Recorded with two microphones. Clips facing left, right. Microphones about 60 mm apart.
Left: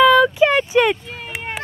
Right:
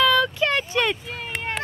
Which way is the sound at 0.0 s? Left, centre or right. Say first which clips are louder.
Left 7 dB; centre.